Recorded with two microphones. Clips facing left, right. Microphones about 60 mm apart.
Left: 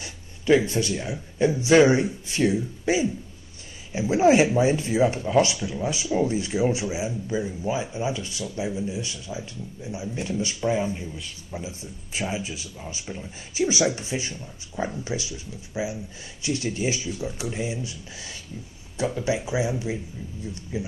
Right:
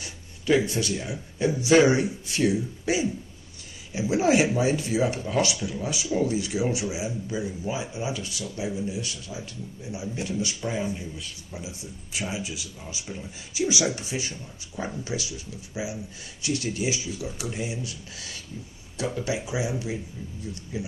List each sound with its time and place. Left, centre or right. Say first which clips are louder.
0.0 s a man's voice: left 3 dB; left